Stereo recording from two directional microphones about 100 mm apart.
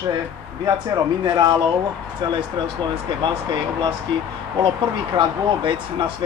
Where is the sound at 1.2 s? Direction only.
50° right (ahead or behind).